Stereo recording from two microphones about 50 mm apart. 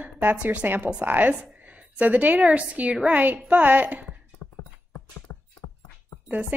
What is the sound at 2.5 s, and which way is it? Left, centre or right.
A woman's voice, right.